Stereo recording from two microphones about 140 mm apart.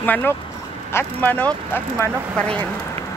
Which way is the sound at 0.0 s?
15° left (ahead or behind).